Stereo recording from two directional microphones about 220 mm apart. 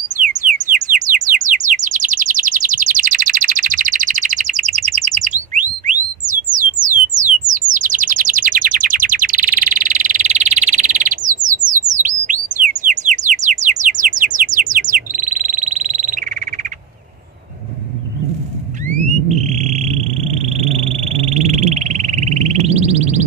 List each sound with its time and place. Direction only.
0.2 s bird: 35° right (ahead or behind)
7.7 s bird: 35° right (ahead or behind)
19.6 s a sound: 30° right (ahead or behind)